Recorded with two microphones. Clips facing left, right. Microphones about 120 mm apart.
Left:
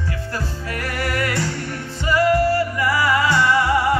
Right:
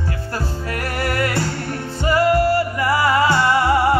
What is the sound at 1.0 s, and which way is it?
Music, 30° right (ahead or behind).